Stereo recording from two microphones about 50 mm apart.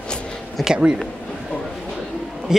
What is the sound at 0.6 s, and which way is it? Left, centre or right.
Speech, centre.